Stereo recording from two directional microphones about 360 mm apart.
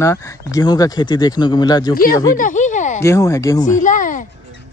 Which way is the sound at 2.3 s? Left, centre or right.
Left.